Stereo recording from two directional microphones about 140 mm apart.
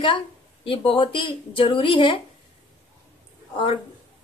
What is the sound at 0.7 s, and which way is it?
Speech, 35° left (ahead or behind).